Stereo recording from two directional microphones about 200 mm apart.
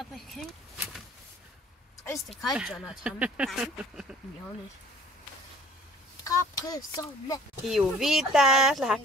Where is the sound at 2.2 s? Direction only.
Centre (ahead or behind).